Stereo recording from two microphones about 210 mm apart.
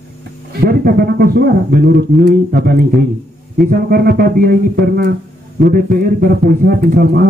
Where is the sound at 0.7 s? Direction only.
45° right (ahead or behind).